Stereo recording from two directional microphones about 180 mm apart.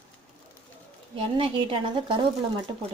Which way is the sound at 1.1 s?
30° right (ahead or behind).